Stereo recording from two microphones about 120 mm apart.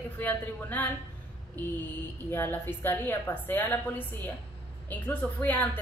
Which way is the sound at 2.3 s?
15° left (ahead or behind).